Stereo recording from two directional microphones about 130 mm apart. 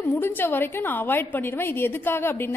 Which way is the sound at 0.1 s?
15° left (ahead or behind).